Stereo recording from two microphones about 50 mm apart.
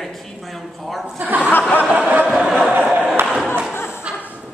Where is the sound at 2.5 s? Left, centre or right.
Centre.